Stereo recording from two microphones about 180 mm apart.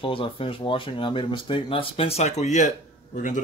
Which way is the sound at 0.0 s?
30° left (ahead or behind).